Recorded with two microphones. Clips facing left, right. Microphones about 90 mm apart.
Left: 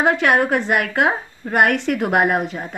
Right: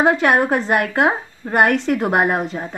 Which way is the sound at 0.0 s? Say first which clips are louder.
Right 1 dB; 20° right (ahead or behind).